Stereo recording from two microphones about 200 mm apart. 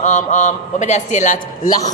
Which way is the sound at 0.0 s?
35° left (ahead or behind).